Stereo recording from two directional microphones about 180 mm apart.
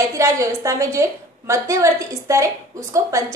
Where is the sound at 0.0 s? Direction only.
15° right (ahead or behind).